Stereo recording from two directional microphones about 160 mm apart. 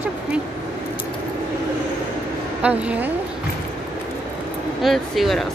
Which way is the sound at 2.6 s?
10° right (ahead or behind).